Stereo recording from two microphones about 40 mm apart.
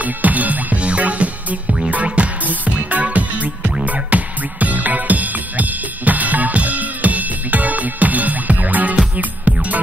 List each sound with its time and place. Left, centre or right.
0.0 s music: right